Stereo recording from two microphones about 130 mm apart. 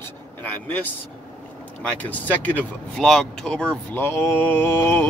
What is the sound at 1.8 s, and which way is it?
Speech, 10° left (ahead or behind).